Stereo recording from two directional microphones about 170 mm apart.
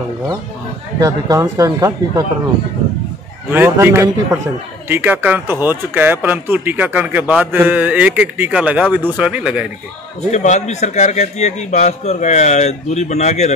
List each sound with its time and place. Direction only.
0.9 s speech: 20° right (ahead or behind)
3.5 s speech: 15° right (ahead or behind)
10.3 s a man's voice: 45° left (ahead or behind)